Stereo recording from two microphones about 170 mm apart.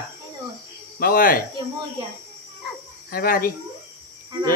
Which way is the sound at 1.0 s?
60° left (ahead or behind).